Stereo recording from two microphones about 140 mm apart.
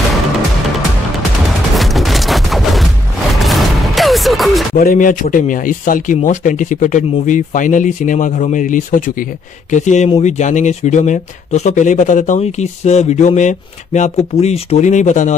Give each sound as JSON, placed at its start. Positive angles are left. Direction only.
{"t": 1.8, "sound": "fusillade", "side_deg": 0}
{"t": 3.3, "sound": "music", "side_deg": 0}
{"t": 4.7, "sound": "speech", "side_deg": 75}
{"t": 9.7, "sound": "speech", "side_deg": 60}